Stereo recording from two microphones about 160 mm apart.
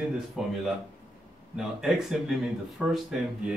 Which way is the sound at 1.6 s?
Centre (ahead or behind).